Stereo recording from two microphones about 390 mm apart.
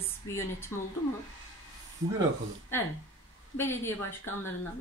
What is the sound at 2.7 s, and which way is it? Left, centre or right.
A woman's voice, centre.